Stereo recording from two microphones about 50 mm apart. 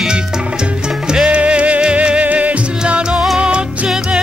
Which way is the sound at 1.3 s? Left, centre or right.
Right.